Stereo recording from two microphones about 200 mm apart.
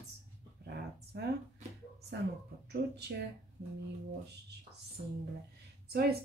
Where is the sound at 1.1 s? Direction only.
55° right (ahead or behind).